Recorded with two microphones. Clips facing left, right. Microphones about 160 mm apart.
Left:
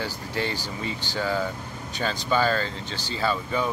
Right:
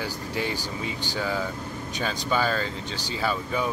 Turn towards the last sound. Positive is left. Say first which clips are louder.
# left 1 dB
turn(degrees=-5)  # may be behind; listen again after turning